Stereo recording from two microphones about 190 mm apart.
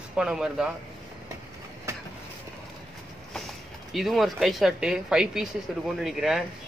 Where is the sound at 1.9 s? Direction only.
15° right (ahead or behind).